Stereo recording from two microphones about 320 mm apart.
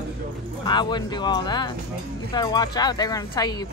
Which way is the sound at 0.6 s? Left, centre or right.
Centre.